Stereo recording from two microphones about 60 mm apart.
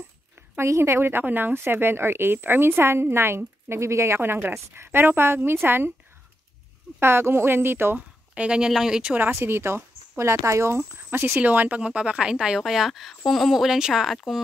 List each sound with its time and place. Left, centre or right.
0.6 s speech: right
7.0 s speech: right
8.4 s speech: centre
9.3 s speech: right
11.0 s speech: right
11.4 s speech: right; by 14.4 s centre